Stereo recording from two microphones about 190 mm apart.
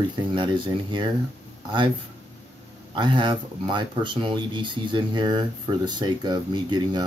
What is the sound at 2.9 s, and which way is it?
Speech, 25° right (ahead or behind).